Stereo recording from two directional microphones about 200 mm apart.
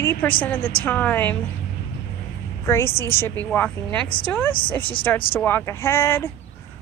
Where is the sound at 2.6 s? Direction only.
10° left (ahead or behind).